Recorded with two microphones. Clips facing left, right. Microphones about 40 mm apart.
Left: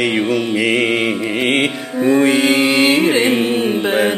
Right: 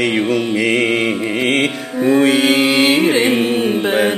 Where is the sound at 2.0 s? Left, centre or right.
Centre.